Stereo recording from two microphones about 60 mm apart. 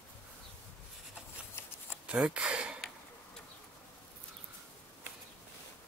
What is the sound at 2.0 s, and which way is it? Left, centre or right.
Speech, centre.